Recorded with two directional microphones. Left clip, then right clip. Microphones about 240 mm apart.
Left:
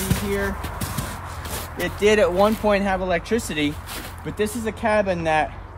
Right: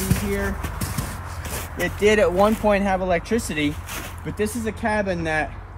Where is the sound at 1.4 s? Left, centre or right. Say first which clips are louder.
Right 2 dB; centre.